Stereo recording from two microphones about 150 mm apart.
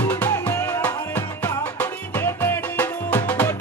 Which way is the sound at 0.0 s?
10° left (ahead or behind).